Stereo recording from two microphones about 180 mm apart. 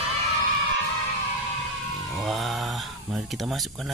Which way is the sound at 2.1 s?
Centre (ahead or behind).